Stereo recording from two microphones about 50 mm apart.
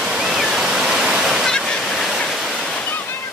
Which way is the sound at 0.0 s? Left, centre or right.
Centre.